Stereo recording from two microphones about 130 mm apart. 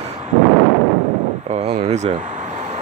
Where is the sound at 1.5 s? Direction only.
55° right (ahead or behind).